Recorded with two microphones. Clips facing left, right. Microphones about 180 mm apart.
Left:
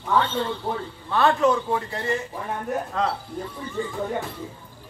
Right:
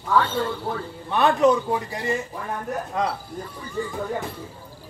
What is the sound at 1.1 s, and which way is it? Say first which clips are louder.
A man's voice: right 2 dB; 20° right (ahead or behind).